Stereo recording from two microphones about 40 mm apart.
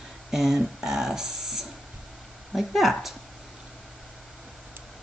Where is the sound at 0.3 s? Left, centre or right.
Centre.